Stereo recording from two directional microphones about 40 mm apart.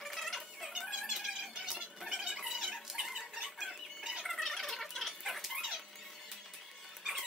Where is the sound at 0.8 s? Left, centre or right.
Centre.